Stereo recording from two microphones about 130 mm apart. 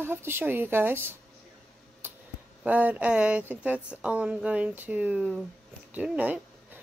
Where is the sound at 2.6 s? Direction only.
10° right (ahead or behind).